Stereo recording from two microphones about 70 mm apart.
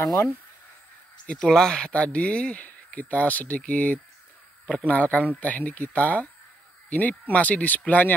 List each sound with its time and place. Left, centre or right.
0.0 s speech: left
1.2 s speech: centre